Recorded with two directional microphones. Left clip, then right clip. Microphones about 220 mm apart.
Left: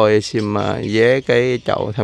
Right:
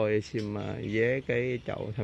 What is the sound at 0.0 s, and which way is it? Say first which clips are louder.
Speech: left 14 dB; 20° left (ahead or behind).